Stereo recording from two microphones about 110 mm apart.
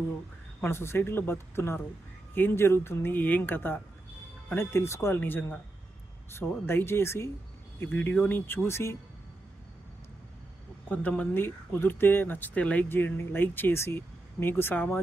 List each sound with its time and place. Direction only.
0.6 s speech: 20° left (ahead or behind)
10.9 s speech: 15° left (ahead or behind)